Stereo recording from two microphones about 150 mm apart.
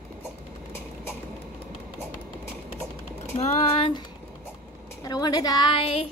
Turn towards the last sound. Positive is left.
turn(degrees=35)  # may be behind; listen again after turning